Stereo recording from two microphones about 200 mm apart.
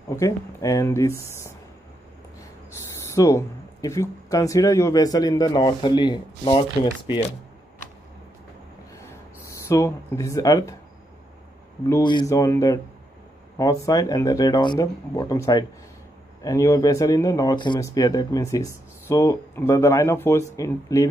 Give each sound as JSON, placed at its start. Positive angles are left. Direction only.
{"t": 0.1, "sound": "speech", "side_deg": 15}
{"t": 3.2, "sound": "speech", "side_deg": 15}
{"t": 9.4, "sound": "speech", "side_deg": 15}
{"t": 11.9, "sound": "speech", "side_deg": 20}